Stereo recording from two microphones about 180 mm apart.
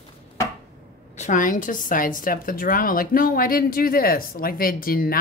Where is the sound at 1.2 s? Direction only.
45° left (ahead or behind).